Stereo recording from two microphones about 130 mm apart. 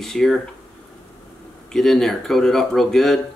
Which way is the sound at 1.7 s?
5° left (ahead or behind).